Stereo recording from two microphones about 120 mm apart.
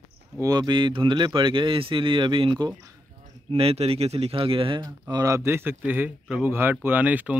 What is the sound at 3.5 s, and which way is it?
Speech, 55° right (ahead or behind).